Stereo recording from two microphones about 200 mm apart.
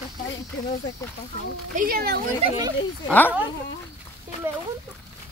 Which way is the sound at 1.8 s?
50° right (ahead or behind).